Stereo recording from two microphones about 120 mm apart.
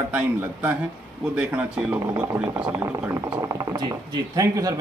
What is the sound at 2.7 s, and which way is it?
Speech, 20° right (ahead or behind).